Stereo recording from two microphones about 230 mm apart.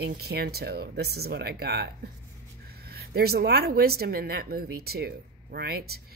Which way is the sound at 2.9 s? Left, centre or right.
Right.